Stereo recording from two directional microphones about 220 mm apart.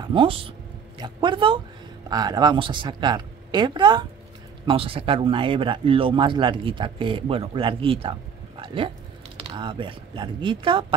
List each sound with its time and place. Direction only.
0.0 s speech: 20° right (ahead or behind)